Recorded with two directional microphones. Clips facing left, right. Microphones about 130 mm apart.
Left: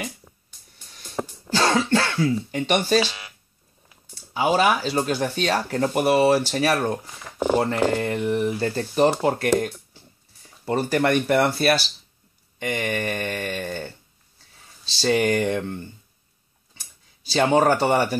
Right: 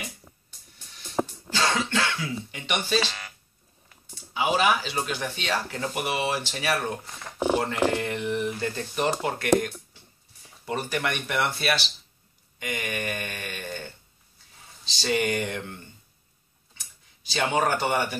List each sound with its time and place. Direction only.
1.5 s throat clearing: 45° left (ahead or behind)
3.0 s speech: 10° left (ahead or behind)
4.3 s speech: 40° left (ahead or behind)
15.0 s speech: 40° left (ahead or behind)
17.3 s speech: 30° left (ahead or behind)